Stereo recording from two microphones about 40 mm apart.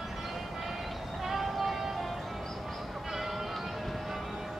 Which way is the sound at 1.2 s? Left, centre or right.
Centre.